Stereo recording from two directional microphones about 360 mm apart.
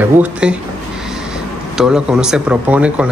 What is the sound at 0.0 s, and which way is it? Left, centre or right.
Speech, centre.